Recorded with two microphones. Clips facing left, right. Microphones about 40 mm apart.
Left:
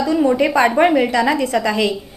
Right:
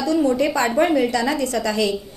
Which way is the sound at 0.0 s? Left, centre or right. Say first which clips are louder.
Left 3 dB; centre.